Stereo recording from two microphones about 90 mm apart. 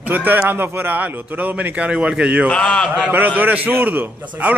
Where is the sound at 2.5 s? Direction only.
10° left (ahead or behind).